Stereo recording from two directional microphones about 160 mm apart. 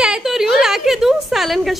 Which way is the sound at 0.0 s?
5° right (ahead or behind).